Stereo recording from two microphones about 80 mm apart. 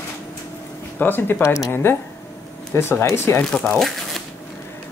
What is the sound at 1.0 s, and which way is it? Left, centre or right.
Speech, left.